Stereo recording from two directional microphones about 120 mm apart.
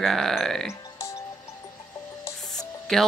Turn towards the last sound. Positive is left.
turn(degrees=0)  # may be behind; listen again after turning